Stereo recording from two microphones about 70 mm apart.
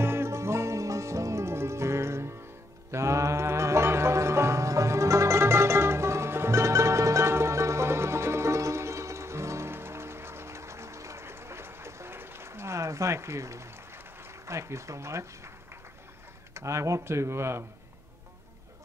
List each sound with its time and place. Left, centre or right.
0.0 s music: right
16.5 s speech: right